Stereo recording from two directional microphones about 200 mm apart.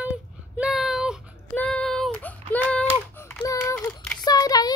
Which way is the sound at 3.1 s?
10° left (ahead or behind).